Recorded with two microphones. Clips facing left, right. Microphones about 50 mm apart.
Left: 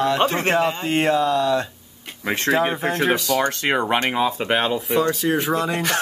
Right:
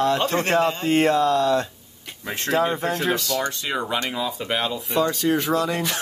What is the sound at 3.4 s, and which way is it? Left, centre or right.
Speech, left.